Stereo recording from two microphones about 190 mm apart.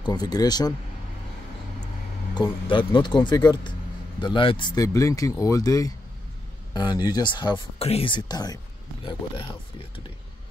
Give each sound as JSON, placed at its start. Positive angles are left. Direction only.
{"t": 0.0, "sound": "speech", "side_deg": 20}
{"t": 2.3, "sound": "speech", "side_deg": 25}